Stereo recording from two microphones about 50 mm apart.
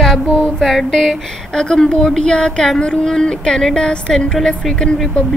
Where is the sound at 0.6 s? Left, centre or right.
Centre.